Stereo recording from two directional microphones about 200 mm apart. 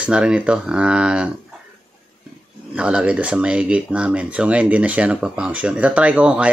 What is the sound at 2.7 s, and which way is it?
Speech, 5° right (ahead or behind).